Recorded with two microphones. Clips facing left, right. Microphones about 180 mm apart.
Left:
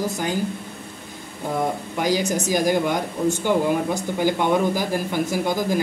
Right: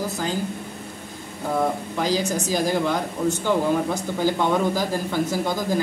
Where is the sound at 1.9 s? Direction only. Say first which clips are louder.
Left 1 dB; 15° left (ahead or behind).